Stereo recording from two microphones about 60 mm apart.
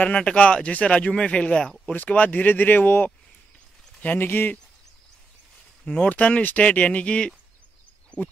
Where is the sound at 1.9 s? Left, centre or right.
Left.